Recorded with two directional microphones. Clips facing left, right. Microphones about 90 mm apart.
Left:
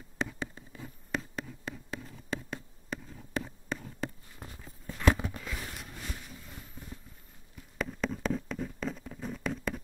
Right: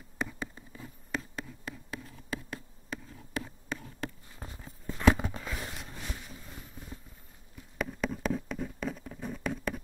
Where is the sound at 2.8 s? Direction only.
Centre (ahead or behind).